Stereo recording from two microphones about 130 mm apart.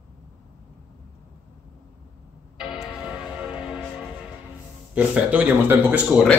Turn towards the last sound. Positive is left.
turn(degrees=-15)  # may be behind; listen again after turning